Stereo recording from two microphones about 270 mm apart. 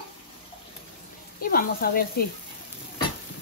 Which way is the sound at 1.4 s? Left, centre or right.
Left.